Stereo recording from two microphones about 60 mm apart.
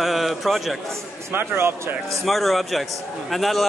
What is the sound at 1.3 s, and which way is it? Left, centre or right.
Speech, right.